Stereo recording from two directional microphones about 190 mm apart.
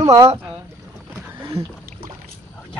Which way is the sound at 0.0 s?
15° right (ahead or behind).